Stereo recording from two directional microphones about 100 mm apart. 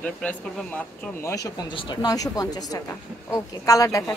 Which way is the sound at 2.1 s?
35° left (ahead or behind).